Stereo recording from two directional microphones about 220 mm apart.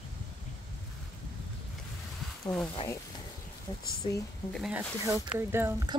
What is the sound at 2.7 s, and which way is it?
Speech, 20° left (ahead or behind).